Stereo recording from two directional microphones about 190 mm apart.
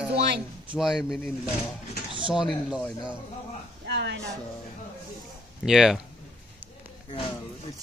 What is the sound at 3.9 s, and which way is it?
Speech, 65° right (ahead or behind).